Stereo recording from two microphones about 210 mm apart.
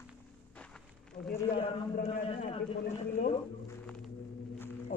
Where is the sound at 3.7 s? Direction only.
5° left (ahead or behind).